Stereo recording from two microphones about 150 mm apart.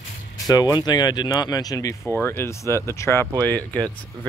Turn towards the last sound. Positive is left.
turn(degrees=5)  # may be behind; listen again after turning